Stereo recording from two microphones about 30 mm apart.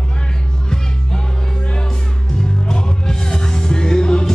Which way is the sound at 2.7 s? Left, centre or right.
Left.